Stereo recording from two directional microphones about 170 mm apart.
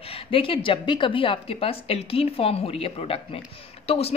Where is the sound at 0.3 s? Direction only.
30° left (ahead or behind).